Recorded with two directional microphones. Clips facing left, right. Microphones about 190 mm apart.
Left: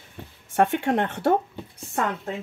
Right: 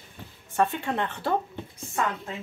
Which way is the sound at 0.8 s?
50° left (ahead or behind).